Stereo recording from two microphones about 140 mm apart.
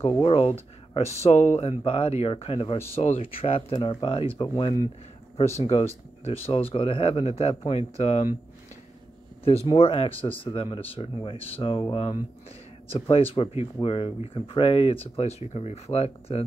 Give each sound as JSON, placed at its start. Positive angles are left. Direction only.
{"t": 0.0, "sound": "speech", "side_deg": 40}
{"t": 3.7, "sound": "speech", "side_deg": 35}
{"t": 5.6, "sound": "speech", "side_deg": 45}
{"t": 9.7, "sound": "speech", "side_deg": 40}